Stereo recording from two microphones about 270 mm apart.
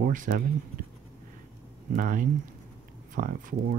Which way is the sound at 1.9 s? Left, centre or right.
Right.